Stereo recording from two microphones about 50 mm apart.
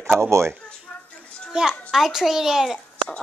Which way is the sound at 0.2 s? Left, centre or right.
Right.